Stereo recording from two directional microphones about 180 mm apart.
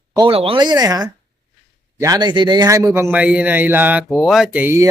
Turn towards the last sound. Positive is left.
turn(degrees=-10)  # may be behind; listen again after turning